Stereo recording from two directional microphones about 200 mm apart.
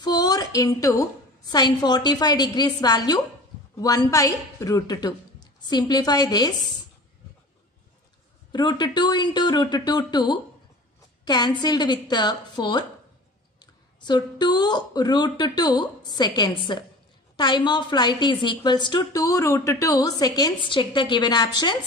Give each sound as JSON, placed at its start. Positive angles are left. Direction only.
{"t": 0.0, "sound": "a sound", "side_deg": 20}
{"t": 1.5, "sound": "a woman's voice", "side_deg": 20}
{"t": 8.5, "sound": "a woman's voice", "side_deg": 20}